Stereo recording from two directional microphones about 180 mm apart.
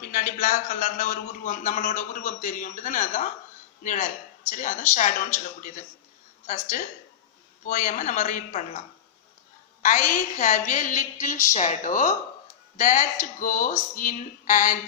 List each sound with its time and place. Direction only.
0.1 s speech: 50° left (ahead or behind)